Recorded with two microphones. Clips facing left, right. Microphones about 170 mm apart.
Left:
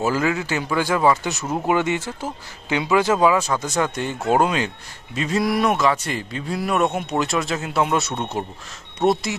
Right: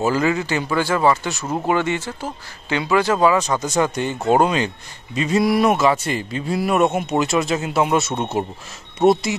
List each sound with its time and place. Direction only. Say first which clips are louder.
0.0 s a man's voice: right 2 dB; 5° left (ahead or behind)
1.1 s a man's voice: right 1 dB; 15° left (ahead or behind); by 9.3 s centre (ahead or behind)